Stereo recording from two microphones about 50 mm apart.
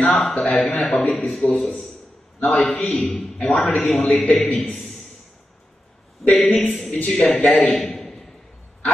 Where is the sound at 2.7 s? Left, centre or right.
Left.